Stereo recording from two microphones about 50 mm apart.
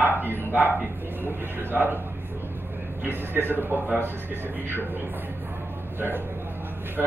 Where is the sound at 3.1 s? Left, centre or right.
Left.